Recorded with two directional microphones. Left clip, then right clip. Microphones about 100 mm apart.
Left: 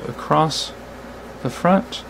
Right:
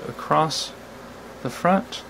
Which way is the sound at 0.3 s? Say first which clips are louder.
Left 3 dB; 5° left (ahead or behind).